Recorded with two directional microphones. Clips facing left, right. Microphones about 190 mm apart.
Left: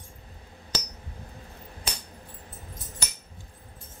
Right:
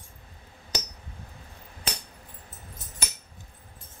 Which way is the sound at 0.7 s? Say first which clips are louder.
Even; 20° right (ahead or behind).